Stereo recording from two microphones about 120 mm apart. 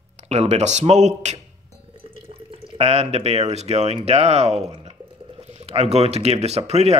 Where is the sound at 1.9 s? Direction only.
50° right (ahead or behind).